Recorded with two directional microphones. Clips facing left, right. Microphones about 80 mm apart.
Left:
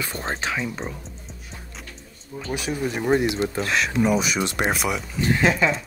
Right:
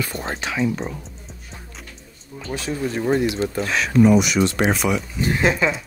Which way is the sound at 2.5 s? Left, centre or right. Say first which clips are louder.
Right 2 dB; centre.